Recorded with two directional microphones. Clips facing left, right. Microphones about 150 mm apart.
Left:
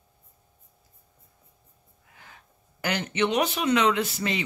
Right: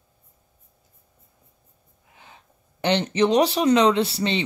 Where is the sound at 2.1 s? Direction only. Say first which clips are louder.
Right 2 dB; 20° right (ahead or behind).